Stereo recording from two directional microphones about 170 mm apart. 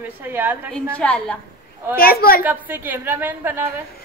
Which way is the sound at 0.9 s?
5° left (ahead or behind).